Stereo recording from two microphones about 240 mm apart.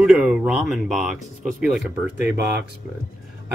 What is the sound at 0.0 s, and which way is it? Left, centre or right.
Speech, centre.